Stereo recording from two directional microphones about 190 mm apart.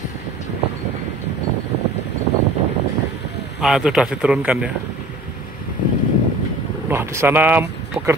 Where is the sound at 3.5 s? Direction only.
Centre (ahead or behind).